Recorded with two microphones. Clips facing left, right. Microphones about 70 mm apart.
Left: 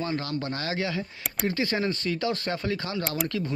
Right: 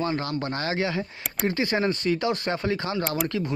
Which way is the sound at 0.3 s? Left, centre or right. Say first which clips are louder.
Right 2 dB; right.